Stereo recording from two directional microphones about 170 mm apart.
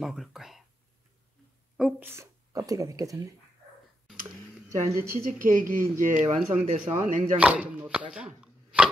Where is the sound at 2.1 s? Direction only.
20° right (ahead or behind).